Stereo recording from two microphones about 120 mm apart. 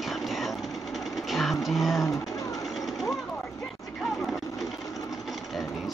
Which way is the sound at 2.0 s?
30° left (ahead or behind).